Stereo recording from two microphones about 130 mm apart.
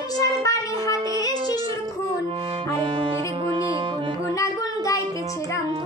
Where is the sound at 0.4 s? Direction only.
25° left (ahead or behind).